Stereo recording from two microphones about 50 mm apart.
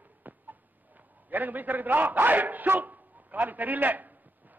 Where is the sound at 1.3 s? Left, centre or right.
Right.